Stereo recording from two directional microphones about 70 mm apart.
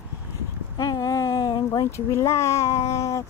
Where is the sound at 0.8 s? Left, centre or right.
Left.